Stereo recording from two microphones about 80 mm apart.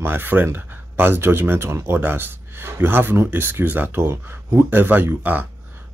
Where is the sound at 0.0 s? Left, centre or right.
Right.